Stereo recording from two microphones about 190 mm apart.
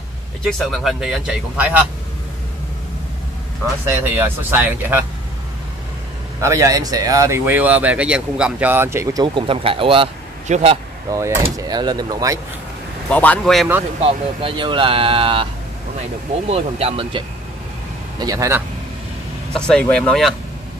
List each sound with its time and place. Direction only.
0.5 s speech: centre (ahead or behind)
3.9 s speech: 10° right (ahead or behind)
6.4 s speech: 15° right (ahead or behind); by 10.8 s 35° right (ahead or behind)
11.1 s speech: 15° right (ahead or behind)
13.1 s speech: 5° left (ahead or behind)
14.0 s speech: 25° right (ahead or behind)
16.4 s speech: 30° right (ahead or behind)
18.2 s speech: 15° right (ahead or behind)
19.5 s speech: 5° left (ahead or behind)